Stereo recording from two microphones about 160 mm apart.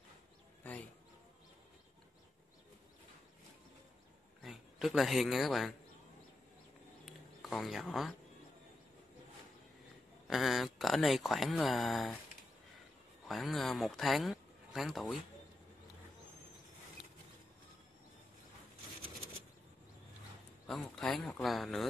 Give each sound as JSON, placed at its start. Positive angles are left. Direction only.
{"t": 4.4, "sound": "speech", "side_deg": 0}
{"t": 7.1, "sound": "a sound", "side_deg": 0}
{"t": 10.2, "sound": "speech", "side_deg": 0}
{"t": 13.3, "sound": "speech", "side_deg": 0}
{"t": 20.6, "sound": "speech", "side_deg": 0}